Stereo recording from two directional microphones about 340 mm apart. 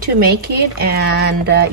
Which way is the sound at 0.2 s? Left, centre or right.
Right.